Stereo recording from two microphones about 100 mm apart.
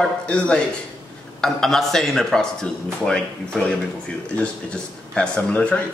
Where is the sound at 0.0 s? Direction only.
10° left (ahead or behind).